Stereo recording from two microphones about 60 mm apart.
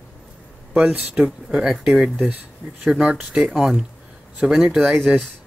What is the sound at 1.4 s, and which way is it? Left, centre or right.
Speech, centre.